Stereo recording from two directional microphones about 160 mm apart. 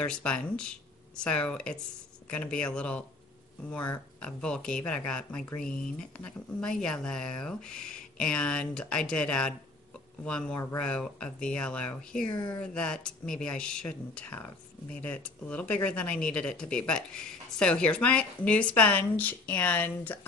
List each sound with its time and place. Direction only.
0.0 s speech: 5° left (ahead or behind)
12.3 s speech: 25° left (ahead or behind)
12.7 s speech: 5° left (ahead or behind)